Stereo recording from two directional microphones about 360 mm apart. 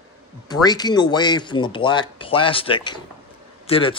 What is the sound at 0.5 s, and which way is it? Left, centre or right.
A man's voice, centre.